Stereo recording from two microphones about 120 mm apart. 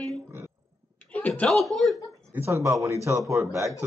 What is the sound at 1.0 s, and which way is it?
Speech, 15° left (ahead or behind).